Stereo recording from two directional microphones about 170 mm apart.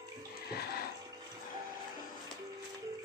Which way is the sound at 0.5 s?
65° left (ahead or behind).